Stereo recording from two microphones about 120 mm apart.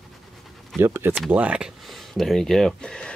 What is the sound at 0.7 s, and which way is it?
Speech, 20° right (ahead or behind).